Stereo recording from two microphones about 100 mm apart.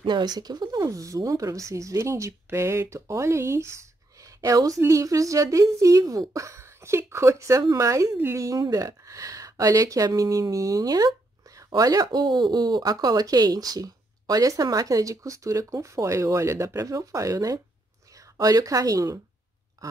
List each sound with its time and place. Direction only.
0.0 s speech: 45° right (ahead or behind)
19.8 s duck: 35° right (ahead or behind)